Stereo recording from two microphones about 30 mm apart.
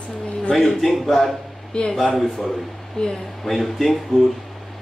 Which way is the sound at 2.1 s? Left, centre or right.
Centre.